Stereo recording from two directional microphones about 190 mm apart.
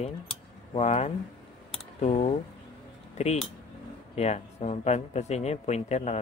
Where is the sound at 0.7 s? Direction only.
35° left (ahead or behind).